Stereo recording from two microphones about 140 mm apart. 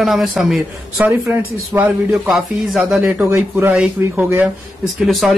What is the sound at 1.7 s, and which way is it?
Speech, 10° right (ahead or behind).